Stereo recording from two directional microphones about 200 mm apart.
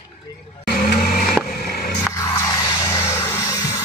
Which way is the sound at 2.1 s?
15° left (ahead or behind).